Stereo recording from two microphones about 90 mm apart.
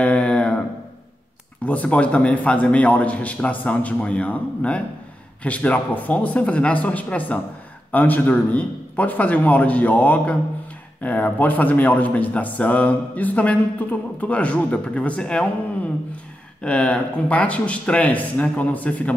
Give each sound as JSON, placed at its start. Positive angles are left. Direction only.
{"t": 0.0, "sound": "a sound", "side_deg": 10}
{"t": 1.6, "sound": "a man's voice", "side_deg": 15}
{"t": 16.6, "sound": "a man's voice", "side_deg": 10}